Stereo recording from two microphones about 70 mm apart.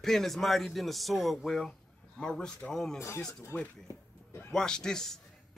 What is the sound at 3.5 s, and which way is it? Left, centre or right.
Speech, left.